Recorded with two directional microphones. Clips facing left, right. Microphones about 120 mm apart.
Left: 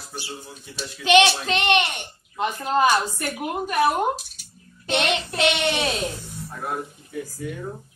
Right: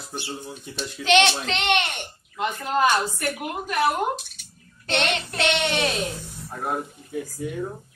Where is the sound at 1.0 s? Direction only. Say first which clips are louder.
Left 3 dB; 10° left (ahead or behind).